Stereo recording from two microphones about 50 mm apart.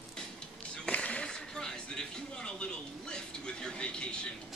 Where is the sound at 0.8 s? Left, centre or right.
Left.